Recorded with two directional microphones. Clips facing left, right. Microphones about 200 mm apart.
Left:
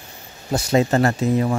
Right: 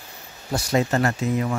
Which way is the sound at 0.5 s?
25° left (ahead or behind).